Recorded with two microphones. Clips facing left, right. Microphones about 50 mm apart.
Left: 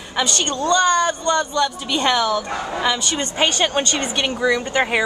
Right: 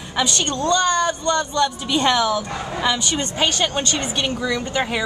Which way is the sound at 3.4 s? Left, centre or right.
Centre.